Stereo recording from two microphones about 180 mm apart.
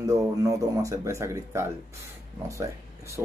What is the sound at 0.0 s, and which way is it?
Speech, 20° right (ahead or behind).